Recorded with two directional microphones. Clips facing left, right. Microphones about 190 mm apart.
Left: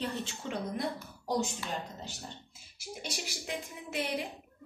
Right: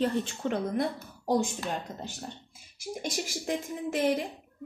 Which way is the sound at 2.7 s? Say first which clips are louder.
Right 7 dB; 45° right (ahead or behind).